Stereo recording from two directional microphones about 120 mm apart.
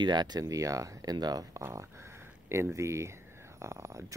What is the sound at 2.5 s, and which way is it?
Speech, 25° right (ahead or behind).